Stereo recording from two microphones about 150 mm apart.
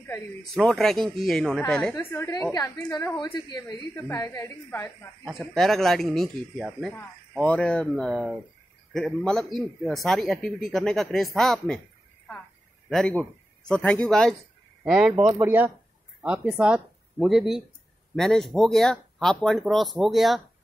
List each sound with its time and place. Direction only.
0.4 s a woman's voice: centre (ahead or behind); by 4.9 s 20° left (ahead or behind)
5.2 s speech: centre (ahead or behind)
13.7 s speech: 5° left (ahead or behind)